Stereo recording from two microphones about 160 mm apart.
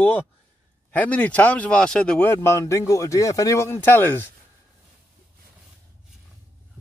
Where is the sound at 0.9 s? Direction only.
10° left (ahead or behind).